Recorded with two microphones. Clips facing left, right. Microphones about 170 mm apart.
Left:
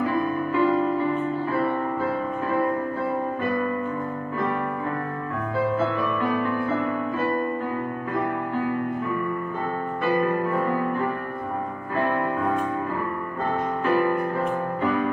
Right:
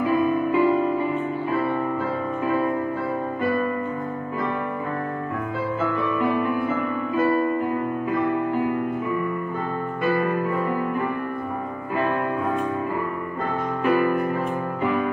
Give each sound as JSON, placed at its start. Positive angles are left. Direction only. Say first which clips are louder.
{"t": 0.0, "sound": "music", "louder": "right 3 dB", "side_deg": -15}